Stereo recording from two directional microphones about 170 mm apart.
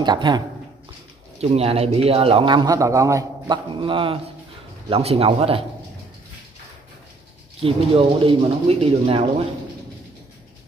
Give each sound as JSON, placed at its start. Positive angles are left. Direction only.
{"t": 0.0, "sound": "a man's voice", "side_deg": -25}
{"t": 1.4, "sound": "a man's voice", "side_deg": -35}
{"t": 7.6, "sound": "speech", "side_deg": -35}